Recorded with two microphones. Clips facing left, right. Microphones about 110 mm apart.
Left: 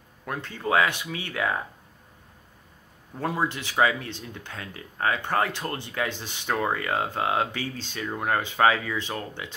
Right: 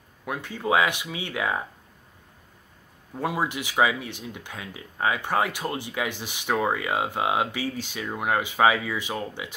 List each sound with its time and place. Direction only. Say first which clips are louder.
0.2 s speech: right 1 dB; 10° right (ahead or behind)
3.2 s speech: even; 10° right (ahead or behind)